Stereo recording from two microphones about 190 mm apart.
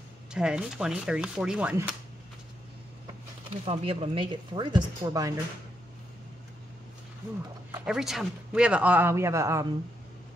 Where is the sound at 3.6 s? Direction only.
30° right (ahead or behind).